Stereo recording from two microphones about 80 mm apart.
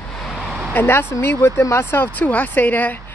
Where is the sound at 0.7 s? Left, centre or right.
Left.